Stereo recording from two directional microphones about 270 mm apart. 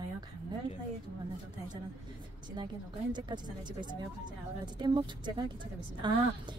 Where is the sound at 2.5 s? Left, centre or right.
Centre.